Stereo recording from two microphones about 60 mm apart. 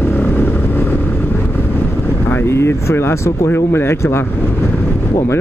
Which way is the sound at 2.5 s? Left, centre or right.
Left.